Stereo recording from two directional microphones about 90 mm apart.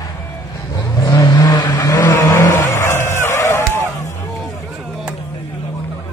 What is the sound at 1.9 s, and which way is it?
Vehicle, 20° left (ahead or behind).